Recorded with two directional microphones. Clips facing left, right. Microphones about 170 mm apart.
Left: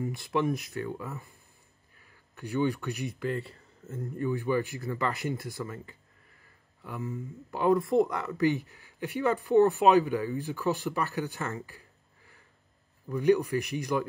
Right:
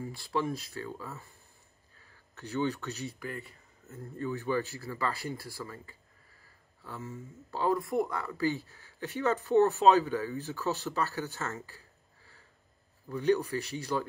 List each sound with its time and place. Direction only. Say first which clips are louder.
0.0 s speech: left 4 dB; 20° left (ahead or behind)
2.3 s speech: left 3 dB; 10° left (ahead or behind)
13.2 s speech: left 4 dB; 15° left (ahead or behind)